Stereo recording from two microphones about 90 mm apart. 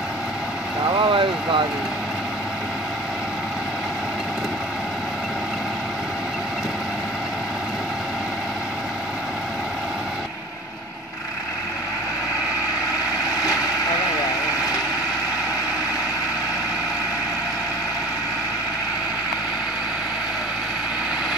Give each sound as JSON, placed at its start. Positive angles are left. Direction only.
{"t": 0.8, "sound": "vehicle", "side_deg": -60}